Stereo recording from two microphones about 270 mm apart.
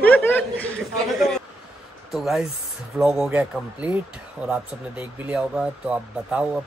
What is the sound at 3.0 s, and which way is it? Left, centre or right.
Speech, centre.